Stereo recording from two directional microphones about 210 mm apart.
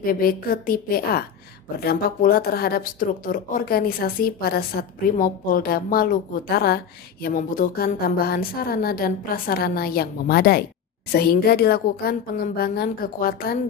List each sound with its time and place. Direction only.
0.0 s speech: 45° left (ahead or behind)